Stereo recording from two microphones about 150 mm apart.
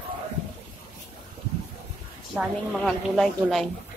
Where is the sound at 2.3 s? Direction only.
Centre (ahead or behind).